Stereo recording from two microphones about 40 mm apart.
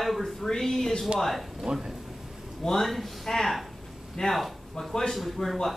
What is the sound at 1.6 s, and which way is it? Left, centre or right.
Speech, centre.